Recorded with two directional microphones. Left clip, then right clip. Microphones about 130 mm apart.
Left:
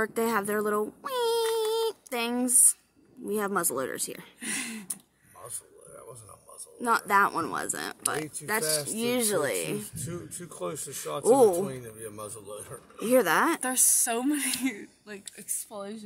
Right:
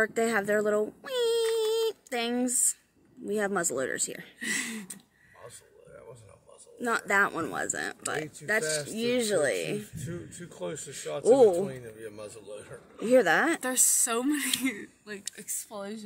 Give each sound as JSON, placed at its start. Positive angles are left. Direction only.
{"t": 0.0, "sound": "speech", "side_deg": 25}
{"t": 6.8, "sound": "speech", "side_deg": 25}
{"t": 9.9, "sound": "speech", "side_deg": 50}
{"t": 11.5, "sound": "speech", "side_deg": 75}
{"t": 13.2, "sound": "speech", "side_deg": 25}